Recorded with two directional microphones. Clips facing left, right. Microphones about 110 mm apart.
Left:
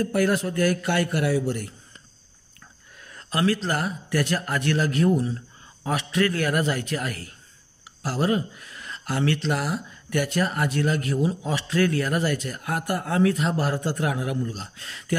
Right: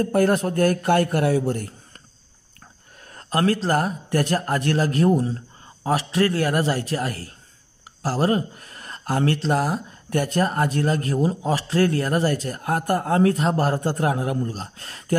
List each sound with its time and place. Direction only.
0.0 s a man's voice: 45° right (ahead or behind)
3.1 s speech: 45° right (ahead or behind)